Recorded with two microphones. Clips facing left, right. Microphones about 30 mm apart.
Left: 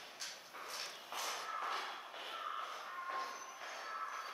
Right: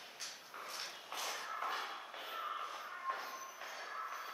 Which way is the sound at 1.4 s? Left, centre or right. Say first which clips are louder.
Even; centre.